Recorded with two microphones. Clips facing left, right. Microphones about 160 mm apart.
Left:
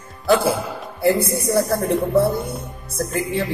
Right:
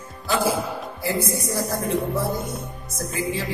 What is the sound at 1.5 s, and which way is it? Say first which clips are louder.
Speech: left 7 dB; 55° left (ahead or behind).